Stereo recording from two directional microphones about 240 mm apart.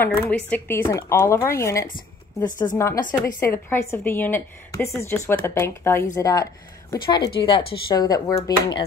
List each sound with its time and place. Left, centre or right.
0.0 s speech: centre